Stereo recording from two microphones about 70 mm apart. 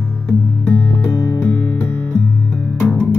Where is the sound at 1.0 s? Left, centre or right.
Left.